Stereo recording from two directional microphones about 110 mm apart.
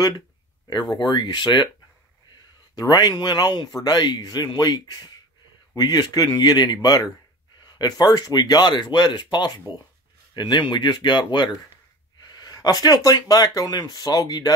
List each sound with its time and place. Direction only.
0.7 s speech: 40° left (ahead or behind)
2.7 s speech: 35° left (ahead or behind)